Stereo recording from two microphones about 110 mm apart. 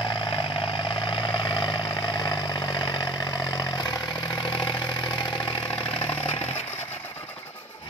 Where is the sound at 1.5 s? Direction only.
45° left (ahead or behind).